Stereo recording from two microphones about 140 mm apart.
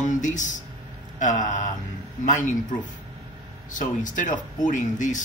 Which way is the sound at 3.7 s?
65° left (ahead or behind).